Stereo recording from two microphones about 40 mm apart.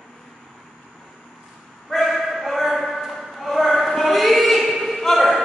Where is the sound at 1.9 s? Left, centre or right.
Centre.